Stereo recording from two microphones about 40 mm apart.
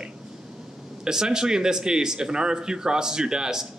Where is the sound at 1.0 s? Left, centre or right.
Centre.